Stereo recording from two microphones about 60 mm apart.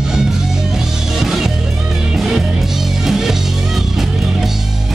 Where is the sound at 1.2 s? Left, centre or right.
Centre.